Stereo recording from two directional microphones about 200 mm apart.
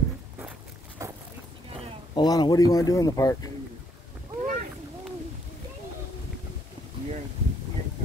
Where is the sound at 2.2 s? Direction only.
20° left (ahead or behind).